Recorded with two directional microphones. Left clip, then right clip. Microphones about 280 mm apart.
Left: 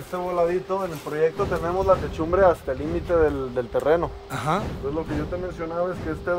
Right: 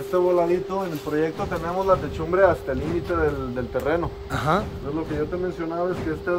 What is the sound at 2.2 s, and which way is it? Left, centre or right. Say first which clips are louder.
Speech: even; left.